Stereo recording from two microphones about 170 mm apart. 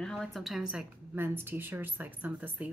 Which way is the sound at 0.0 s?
Centre (ahead or behind).